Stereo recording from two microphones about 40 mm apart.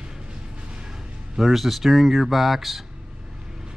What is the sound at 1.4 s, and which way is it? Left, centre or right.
Speech, centre.